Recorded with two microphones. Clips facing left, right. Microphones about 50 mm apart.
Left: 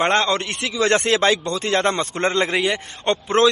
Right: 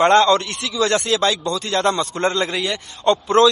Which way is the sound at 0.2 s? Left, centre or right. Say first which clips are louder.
Right 5 dB; left.